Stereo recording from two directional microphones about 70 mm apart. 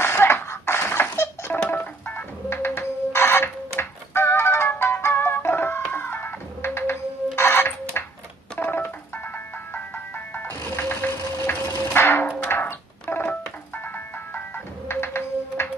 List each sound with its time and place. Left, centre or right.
0.0 s music: left
8.5 s telephone dialing: left
9.8 s music: left
12.4 s a sound: left
13.1 s telephone dialing: left
14.9 s music: left